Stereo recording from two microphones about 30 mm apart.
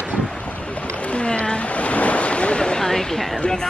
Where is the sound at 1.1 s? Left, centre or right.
Left.